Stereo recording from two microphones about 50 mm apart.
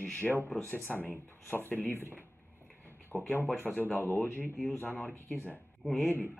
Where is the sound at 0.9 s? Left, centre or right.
Centre.